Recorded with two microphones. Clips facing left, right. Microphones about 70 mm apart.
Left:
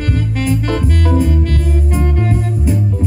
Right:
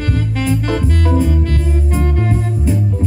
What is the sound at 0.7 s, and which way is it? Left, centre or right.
Music, centre.